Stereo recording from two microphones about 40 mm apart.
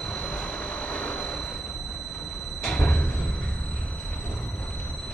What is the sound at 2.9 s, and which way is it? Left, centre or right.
Music, left.